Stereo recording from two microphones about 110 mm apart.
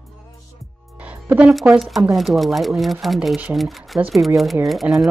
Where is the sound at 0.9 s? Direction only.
15° right (ahead or behind).